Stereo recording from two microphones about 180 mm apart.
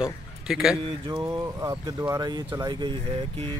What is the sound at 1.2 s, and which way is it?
Speech, 15° right (ahead or behind).